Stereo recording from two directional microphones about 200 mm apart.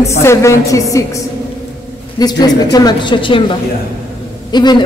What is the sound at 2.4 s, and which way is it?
A woman's voice, 20° left (ahead or behind).